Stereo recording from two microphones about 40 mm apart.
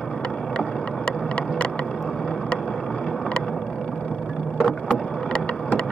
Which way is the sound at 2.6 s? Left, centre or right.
Centre.